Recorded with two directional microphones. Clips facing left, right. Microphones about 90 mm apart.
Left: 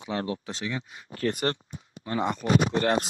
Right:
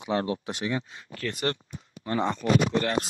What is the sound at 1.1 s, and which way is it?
Speech, 35° left (ahead or behind).